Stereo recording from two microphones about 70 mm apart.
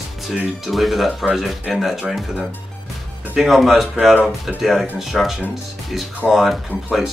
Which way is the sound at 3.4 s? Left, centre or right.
Centre.